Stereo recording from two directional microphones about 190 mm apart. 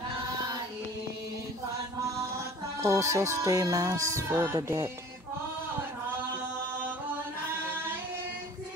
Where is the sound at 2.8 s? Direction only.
15° right (ahead or behind).